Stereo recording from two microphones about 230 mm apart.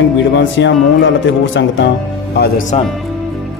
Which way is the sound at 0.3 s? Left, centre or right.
Left.